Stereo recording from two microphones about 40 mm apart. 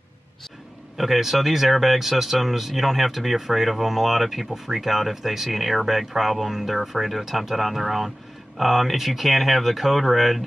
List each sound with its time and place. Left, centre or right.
0.9 s speech: centre